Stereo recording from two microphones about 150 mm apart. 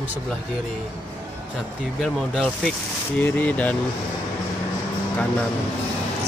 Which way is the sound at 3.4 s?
10° left (ahead or behind).